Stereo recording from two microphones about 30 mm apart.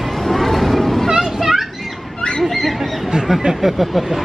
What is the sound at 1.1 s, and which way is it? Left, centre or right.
Children playing, centre.